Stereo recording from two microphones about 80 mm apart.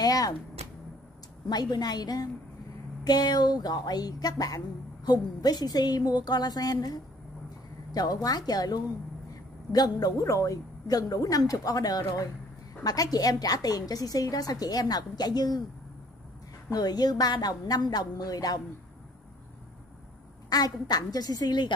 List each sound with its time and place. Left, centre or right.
0.0 s a sound: left
1.5 s a woman's voice: left
16.7 s a woman's voice: left
20.4 s a woman's voice: left